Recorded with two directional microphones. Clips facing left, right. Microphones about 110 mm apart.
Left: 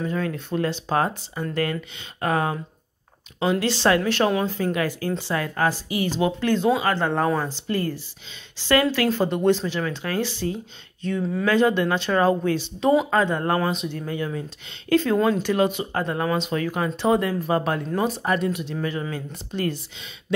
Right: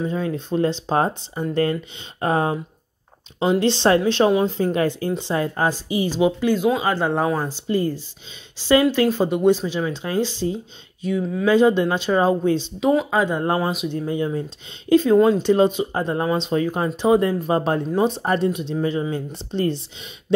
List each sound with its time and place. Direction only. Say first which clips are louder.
0.0 s speech: right 2 dB; 20° right (ahead or behind)
11.0 s speech: right 2 dB; 10° right (ahead or behind)
11.4 s speech: right 4 dB; 15° right (ahead or behind)
12.8 s speech: even; centre (ahead or behind)
13.2 s speech: right 1 dB; 15° right (ahead or behind)
18.2 s speech: right 3 dB; 30° right (ahead or behind)